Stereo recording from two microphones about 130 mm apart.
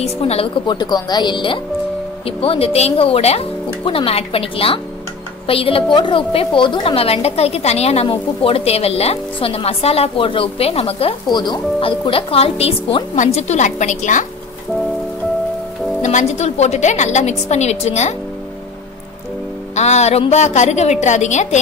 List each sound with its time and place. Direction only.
0.0 s a woman's voice: 50° left (ahead or behind)
0.7 s a woman's voice: 30° left (ahead or behind); by 11.1 s 50° left (ahead or behind)
11.3 s a woman's voice: 35° left (ahead or behind); by 14.2 s 70° left (ahead or behind)
16.0 s a woman's voice: 70° left (ahead or behind)
19.7 s a woman's voice: 60° left (ahead or behind)